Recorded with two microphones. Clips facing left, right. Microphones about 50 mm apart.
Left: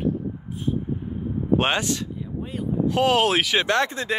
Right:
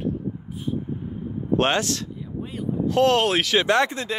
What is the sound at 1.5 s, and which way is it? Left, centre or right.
Speech, centre.